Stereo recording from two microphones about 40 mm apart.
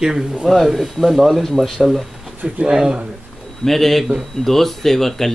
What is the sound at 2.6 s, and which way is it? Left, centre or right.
Speech, centre.